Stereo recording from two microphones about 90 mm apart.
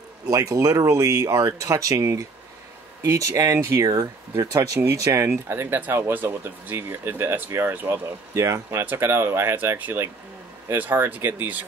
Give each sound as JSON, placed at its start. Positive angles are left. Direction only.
{"t": 0.3, "sound": "speech", "side_deg": -40}
{"t": 3.8, "sound": "speech", "side_deg": -40}